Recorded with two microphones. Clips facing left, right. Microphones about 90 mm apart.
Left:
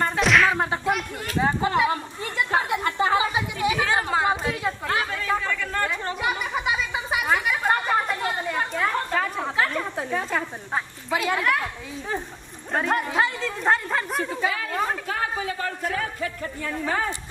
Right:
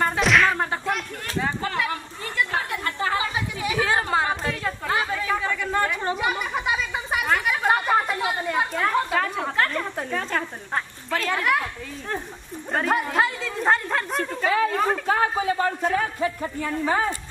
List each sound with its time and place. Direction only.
0.0 s whip: centre (ahead or behind)
1.4 s speech: 20° left (ahead or behind)
3.7 s a woman's voice: centre (ahead or behind)
5.4 s chatter: 15° right (ahead or behind)
6.2 s speech: centre (ahead or behind)
12.7 s a woman's voice: centre (ahead or behind)
15.0 s speech: 35° right (ahead or behind); by 17.1 s 15° right (ahead or behind)